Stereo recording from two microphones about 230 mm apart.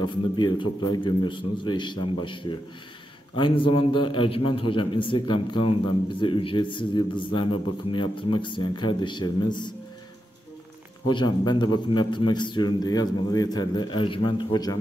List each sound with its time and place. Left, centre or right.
0.0 s a man's voice: centre
11.1 s a man's voice: centre